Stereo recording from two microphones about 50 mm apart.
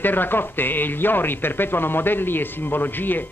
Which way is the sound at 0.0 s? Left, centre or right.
Left.